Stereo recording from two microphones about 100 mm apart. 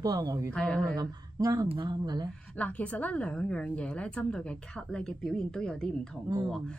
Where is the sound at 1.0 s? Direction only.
40° right (ahead or behind).